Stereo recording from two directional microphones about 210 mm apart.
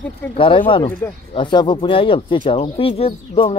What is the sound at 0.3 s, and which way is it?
Speech, 25° left (ahead or behind).